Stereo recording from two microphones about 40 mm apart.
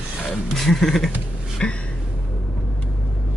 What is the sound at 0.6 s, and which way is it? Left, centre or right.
Speech, centre.